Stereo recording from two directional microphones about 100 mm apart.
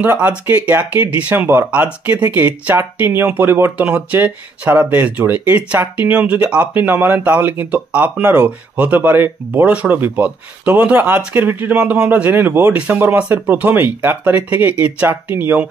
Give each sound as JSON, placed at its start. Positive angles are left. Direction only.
{"t": 0.0, "sound": "speech", "side_deg": -15}